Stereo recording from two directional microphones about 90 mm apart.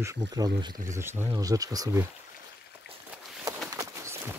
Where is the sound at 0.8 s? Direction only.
30° right (ahead or behind).